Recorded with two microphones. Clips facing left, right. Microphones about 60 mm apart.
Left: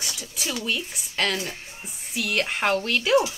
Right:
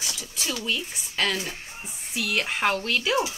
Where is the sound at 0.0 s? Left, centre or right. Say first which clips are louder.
Left 1 dB; centre.